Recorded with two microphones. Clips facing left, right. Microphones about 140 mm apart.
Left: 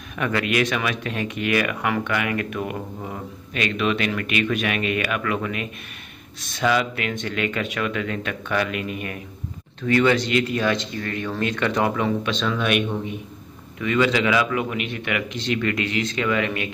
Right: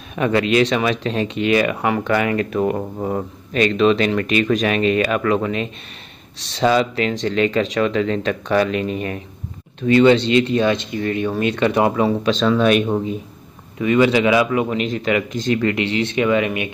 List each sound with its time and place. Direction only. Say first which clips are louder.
0.1 s speech: right 6 dB; 25° right (ahead or behind)
13.7 s speech: right 5 dB; 25° right (ahead or behind); by 15.6 s 40° right (ahead or behind)
15.6 s speech: right 5 dB; 30° right (ahead or behind)